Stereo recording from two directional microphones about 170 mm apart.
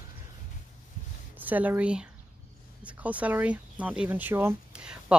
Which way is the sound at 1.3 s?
10° right (ahead or behind).